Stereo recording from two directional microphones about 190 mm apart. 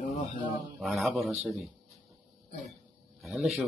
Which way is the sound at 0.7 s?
Centre (ahead or behind).